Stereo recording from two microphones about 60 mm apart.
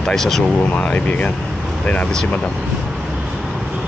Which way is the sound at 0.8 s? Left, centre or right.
Left.